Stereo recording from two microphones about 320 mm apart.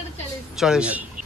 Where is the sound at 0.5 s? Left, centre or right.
Centre.